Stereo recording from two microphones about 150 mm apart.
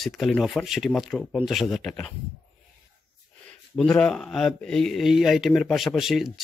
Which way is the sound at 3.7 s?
5° left (ahead or behind).